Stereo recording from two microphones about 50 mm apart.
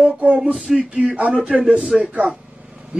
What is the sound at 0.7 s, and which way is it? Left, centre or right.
Speech, right.